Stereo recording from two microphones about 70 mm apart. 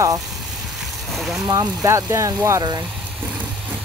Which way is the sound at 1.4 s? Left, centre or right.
Right.